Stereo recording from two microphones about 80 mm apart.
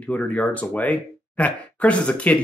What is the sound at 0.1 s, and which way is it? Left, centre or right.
Speech, centre.